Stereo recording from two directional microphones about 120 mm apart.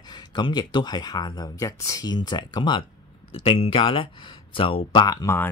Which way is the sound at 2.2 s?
40° left (ahead or behind).